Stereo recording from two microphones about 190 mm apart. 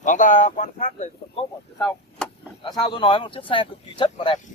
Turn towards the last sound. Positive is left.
turn(degrees=35)  # may be behind; listen again after turning